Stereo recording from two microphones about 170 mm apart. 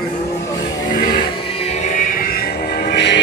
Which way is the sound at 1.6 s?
40° left (ahead or behind).